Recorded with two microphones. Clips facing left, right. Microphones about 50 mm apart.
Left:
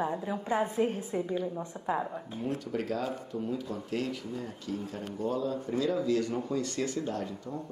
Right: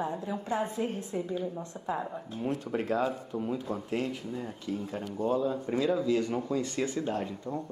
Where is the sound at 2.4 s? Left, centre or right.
Right.